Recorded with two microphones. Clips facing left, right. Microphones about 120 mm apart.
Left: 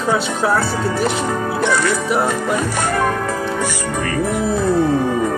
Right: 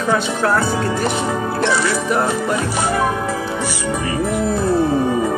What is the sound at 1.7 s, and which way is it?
Speech, 30° right (ahead or behind).